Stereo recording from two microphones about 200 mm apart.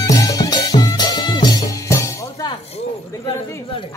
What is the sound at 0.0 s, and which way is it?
Music, 15° left (ahead or behind).